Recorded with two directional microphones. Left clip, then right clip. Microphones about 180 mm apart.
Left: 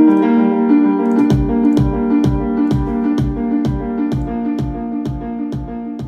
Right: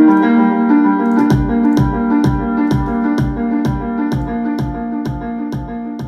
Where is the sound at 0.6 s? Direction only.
45° left (ahead or behind).